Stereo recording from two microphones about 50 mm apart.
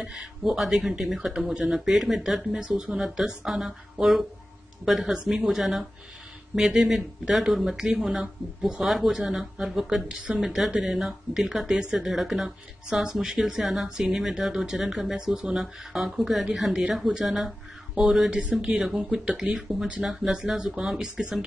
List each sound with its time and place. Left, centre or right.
0.0 s speech: centre
3.0 s speech: centre
12.4 s speech: centre
18.4 s speech: right
19.0 s speech: centre